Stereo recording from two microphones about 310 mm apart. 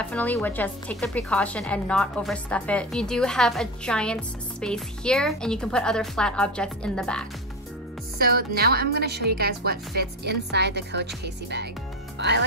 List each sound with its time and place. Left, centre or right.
0.0 s a woman's voice: centre
8.2 s speech: right